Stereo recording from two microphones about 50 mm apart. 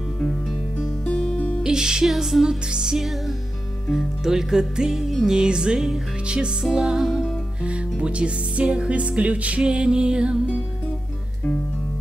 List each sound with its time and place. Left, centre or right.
0.2 s music: centre
1.3 s music: left
1.6 s music: centre
3.0 s music: centre
6.6 s music: centre
7.6 s music: right
9.6 s music: centre